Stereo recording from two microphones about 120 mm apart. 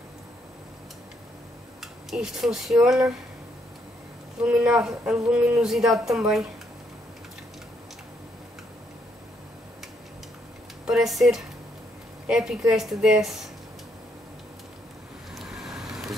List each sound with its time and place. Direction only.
1.8 s speech: 5° right (ahead or behind)
4.5 s speech: 5° right (ahead or behind)
10.9 s speech: centre (ahead or behind)
15.3 s vehicle: 5° right (ahead or behind)